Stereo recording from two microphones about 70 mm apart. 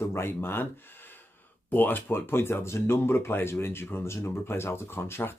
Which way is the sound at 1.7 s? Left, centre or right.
Left.